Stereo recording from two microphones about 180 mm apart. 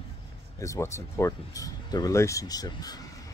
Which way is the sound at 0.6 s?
15° left (ahead or behind).